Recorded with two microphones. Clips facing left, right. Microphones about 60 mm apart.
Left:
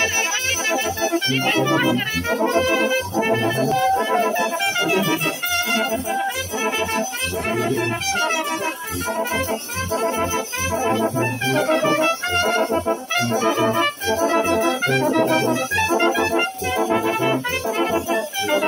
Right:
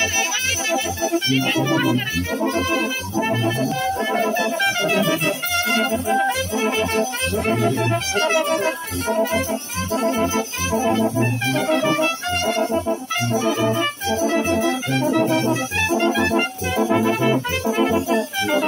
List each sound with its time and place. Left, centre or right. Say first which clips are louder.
4.7 s music: even; centre
10.0 s music: right 3 dB; left
12.0 s brass instrument: left 2 dB; left
14.5 s music: left 2 dB; left
15.1 s brass instrument: left 1 dB; left
16.1 s music: even; centre